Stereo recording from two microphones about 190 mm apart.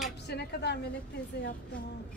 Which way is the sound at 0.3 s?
60° left (ahead or behind).